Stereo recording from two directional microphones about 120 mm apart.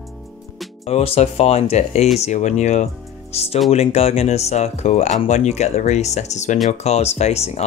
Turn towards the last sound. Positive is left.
turn(degrees=65)  # may be behind; listen again after turning